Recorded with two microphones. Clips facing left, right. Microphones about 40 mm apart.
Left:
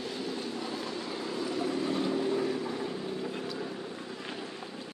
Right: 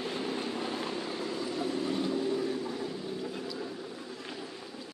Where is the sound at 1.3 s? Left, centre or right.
Left.